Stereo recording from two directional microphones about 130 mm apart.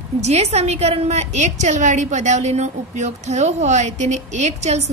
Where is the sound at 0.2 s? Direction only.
55° right (ahead or behind).